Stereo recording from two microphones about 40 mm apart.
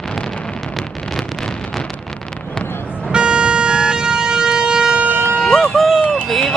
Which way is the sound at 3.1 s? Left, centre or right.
Right.